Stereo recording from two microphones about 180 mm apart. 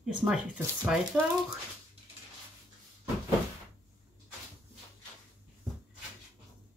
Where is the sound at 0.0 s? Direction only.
5° right (ahead or behind).